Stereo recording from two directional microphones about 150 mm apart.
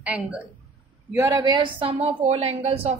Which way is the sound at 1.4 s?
30° right (ahead or behind).